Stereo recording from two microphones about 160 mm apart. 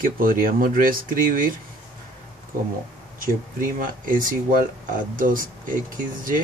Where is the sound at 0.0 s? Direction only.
60° right (ahead or behind).